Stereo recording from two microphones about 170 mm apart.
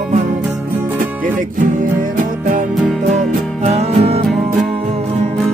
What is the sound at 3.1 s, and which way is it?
Music, 40° right (ahead or behind).